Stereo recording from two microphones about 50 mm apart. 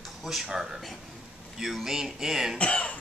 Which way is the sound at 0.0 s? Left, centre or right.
Centre.